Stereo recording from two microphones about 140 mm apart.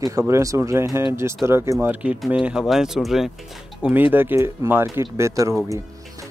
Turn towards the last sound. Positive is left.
turn(degrees=-20)  # may be behind; listen again after turning